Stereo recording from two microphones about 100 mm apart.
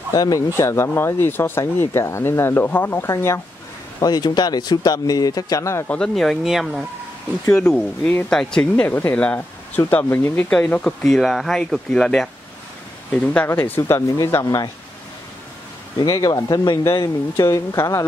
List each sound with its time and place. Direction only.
0.1 s speech: 40° left (ahead or behind)
0.6 s speech: 25° left (ahead or behind)
4.0 s speech: 40° left (ahead or behind)
5.9 s speech: 5° left (ahead or behind)
7.5 s speech: 10° left (ahead or behind)
10.5 s speech: 10° left (ahead or behind)
11.1 s speech: centre (ahead or behind); by 14.7 s 40° left (ahead or behind)
16.0 s speech: 40° left (ahead or behind)
17.4 s speech: 35° left (ahead or behind)